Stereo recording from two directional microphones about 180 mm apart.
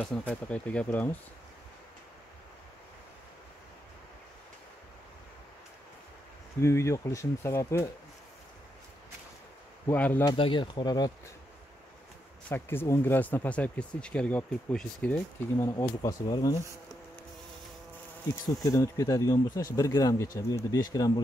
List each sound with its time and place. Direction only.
0.0 s speech: 5° left (ahead or behind)
6.6 s speech: 15° left (ahead or behind)
9.8 s speech: 10° left (ahead or behind)
10.2 s speech: 30° left (ahead or behind)
12.4 s speech: 10° left (ahead or behind)
15.5 s speech: 15° left (ahead or behind)
18.6 s speech: 15° left (ahead or behind)